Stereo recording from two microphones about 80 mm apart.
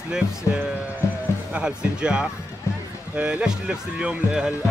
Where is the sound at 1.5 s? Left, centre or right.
Centre.